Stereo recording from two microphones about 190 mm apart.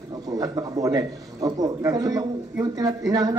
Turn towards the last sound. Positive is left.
turn(degrees=-20)  # may be behind; listen again after turning